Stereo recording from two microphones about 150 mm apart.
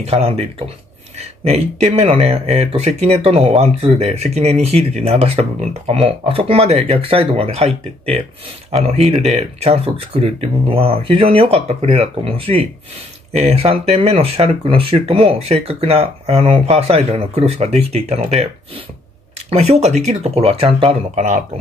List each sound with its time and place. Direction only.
0.0 s speech: 40° right (ahead or behind)
19.5 s speech: 45° right (ahead or behind)